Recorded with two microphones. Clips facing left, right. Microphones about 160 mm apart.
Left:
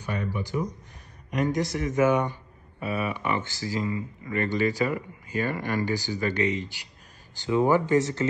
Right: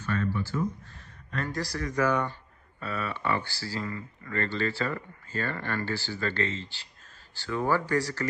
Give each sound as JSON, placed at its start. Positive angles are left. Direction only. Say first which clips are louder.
{"t": 0.0, "sound": "speech", "louder": "right 1 dB", "side_deg": 15}